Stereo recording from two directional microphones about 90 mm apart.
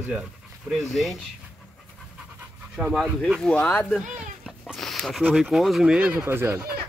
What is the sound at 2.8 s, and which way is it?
Speech, 5° right (ahead or behind).